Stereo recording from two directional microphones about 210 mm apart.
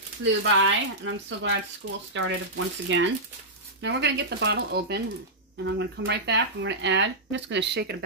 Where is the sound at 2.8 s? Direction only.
60° right (ahead or behind).